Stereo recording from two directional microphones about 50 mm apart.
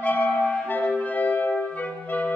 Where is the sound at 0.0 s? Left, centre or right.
Left.